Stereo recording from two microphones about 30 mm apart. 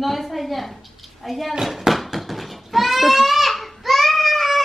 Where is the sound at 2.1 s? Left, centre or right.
Centre.